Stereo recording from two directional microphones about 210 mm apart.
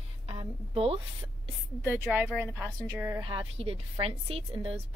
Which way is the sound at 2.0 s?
Centre (ahead or behind).